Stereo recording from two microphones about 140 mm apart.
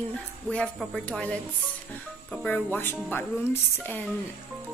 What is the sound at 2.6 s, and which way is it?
A woman's voice, 15° left (ahead or behind).